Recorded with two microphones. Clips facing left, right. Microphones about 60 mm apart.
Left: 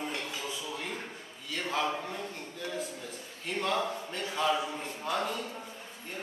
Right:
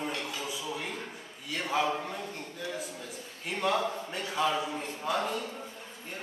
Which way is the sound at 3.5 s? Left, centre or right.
Centre.